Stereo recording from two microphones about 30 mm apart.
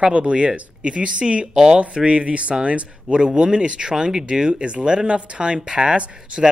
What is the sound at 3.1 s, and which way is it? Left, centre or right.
Speech, right.